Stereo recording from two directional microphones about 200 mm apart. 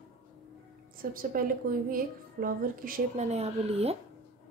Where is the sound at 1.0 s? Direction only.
45° right (ahead or behind).